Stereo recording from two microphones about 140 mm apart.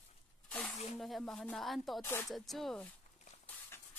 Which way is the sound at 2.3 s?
Centre (ahead or behind).